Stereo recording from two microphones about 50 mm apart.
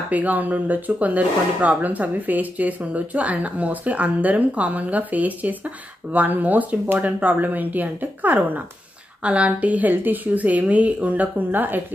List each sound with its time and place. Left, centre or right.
0.1 s speech: right
9.2 s speech: right